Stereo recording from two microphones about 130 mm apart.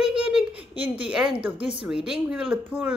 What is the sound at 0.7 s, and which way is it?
Speech, 10° right (ahead or behind).